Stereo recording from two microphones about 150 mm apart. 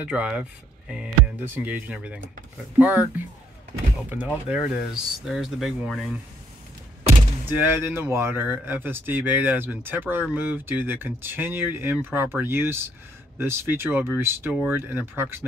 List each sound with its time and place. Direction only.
0.0 s speech: 10° right (ahead or behind)
4.1 s speech: 10° right (ahead or behind)
7.4 s speech: 10° right (ahead or behind)